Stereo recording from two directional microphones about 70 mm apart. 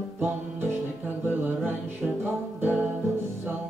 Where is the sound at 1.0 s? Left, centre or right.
Right.